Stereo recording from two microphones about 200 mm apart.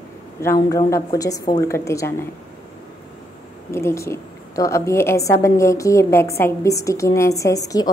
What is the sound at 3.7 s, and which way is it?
A woman's voice, 15° left (ahead or behind).